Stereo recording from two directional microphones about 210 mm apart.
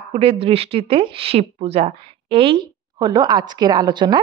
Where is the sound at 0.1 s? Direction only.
25° right (ahead or behind).